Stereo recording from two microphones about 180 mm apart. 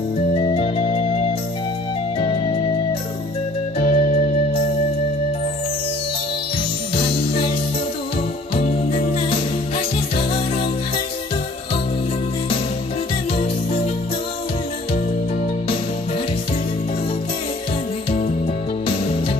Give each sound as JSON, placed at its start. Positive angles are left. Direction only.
{"t": 0.4, "sound": "music", "side_deg": 30}
{"t": 3.8, "sound": "music", "side_deg": 45}
{"t": 7.0, "sound": "music", "side_deg": 30}
{"t": 8.5, "sound": "music", "side_deg": 35}
{"t": 18.9, "sound": "music", "side_deg": 30}